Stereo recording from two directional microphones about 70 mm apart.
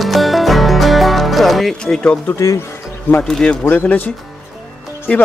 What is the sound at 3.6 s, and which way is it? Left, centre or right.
Speech, left.